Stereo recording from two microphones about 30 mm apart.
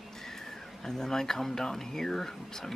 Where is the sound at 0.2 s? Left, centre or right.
Centre.